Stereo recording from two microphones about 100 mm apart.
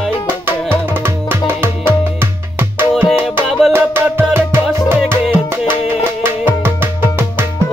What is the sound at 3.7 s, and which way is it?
Music, 25° right (ahead or behind).